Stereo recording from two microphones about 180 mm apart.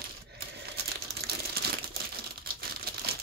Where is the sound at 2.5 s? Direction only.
55° right (ahead or behind).